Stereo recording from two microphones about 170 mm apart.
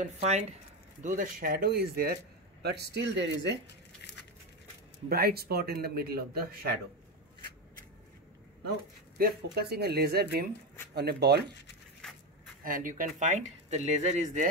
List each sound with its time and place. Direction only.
0.0 s speech: 40° right (ahead or behind)
1.0 s a man's voice: 55° right (ahead or behind)
2.6 s speech: 75° right (ahead or behind)
5.1 s a man's voice: 65° right (ahead or behind)
9.2 s speech: 70° right (ahead or behind)
12.0 s a sound: 5° left (ahead or behind)
12.6 s speech: 55° right (ahead or behind)